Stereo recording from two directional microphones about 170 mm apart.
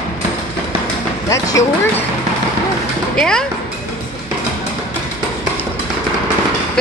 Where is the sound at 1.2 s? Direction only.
20° left (ahead or behind).